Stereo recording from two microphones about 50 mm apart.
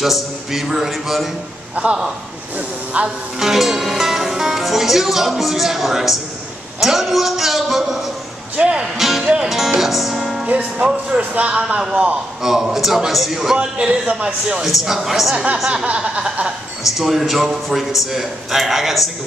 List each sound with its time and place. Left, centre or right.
0.0 s speech: centre
1.8 s a man's voice: right
2.5 s hiss: right
3.3 s speech: centre
8.5 s a man's voice: centre
8.9 s speech: centre
9.2 s music: centre
9.8 s speech: centre
10.4 s a man's voice: right
12.4 s a man's voice: centre
13.6 s a man's voice: right
14.6 s speech: centre
15.3 s a man's voice: centre
16.8 s speech: centre